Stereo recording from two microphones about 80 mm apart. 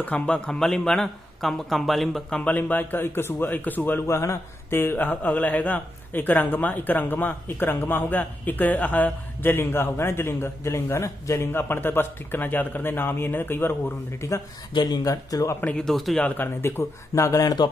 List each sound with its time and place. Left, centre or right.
0.0 s speech: centre
2.3 s speech: centre
4.1 s speech: left
14.7 s speech: left
15.0 s speech: left
15.8 s speech: centre
16.6 s speech: left